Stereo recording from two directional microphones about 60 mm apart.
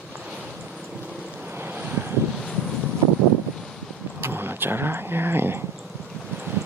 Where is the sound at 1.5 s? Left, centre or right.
Right.